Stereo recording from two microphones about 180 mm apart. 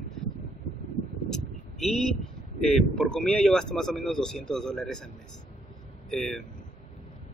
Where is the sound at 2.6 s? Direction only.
Centre (ahead or behind).